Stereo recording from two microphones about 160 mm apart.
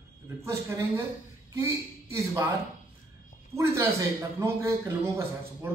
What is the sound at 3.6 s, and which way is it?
A man's voice, 20° right (ahead or behind).